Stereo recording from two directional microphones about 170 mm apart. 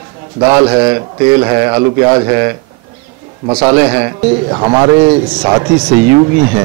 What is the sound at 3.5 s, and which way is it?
A man's voice, 25° right (ahead or behind).